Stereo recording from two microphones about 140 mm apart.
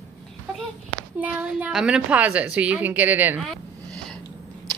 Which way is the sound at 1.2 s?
10° right (ahead or behind).